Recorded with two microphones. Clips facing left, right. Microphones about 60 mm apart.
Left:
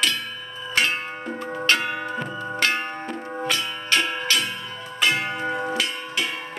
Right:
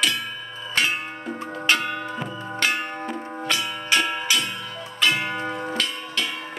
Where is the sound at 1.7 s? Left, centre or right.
Centre.